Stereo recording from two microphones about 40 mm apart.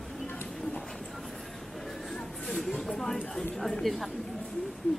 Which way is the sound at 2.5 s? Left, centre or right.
Centre.